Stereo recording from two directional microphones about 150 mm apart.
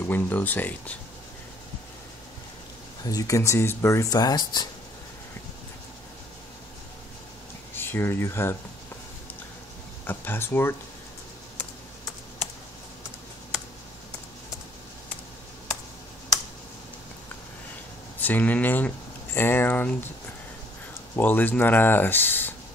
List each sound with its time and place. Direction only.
0.0 s speech: 15° left (ahead or behind)
3.0 s speech: 25° left (ahead or behind)
7.7 s speech: 15° left (ahead or behind)
10.0 s speech: 15° left (ahead or behind)
18.2 s speech: 10° left (ahead or behind)
21.2 s speech: 10° left (ahead or behind)